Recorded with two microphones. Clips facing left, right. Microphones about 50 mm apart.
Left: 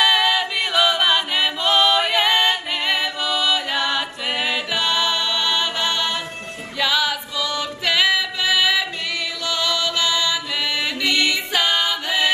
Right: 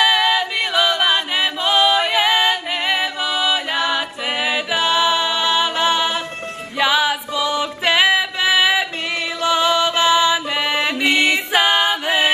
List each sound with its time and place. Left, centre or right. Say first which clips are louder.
0.0 s a capella: right 2 dB; centre
6.8 s music: right 4 dB; right